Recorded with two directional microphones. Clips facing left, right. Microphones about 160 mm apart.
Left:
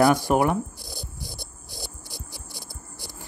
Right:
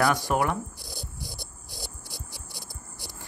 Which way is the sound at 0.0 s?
25° left (ahead or behind).